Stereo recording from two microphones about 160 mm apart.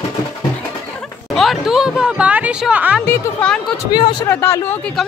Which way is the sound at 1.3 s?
Centre (ahead or behind).